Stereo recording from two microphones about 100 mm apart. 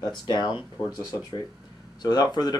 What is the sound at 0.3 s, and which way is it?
Speech, 50° left (ahead or behind).